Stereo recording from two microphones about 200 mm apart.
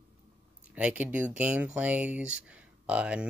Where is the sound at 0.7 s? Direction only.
5° right (ahead or behind).